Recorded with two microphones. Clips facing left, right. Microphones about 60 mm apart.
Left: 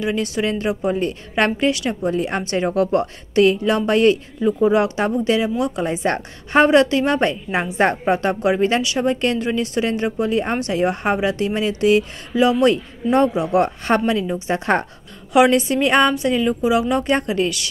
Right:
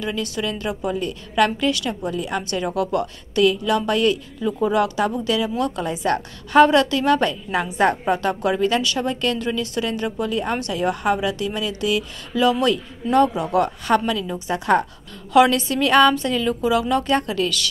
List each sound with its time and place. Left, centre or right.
0.0 s a woman's voice: left
13.6 s a woman's voice: left
15.5 s speech: left